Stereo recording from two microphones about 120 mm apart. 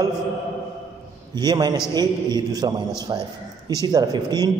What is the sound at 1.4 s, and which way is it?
A man's voice, 35° right (ahead or behind).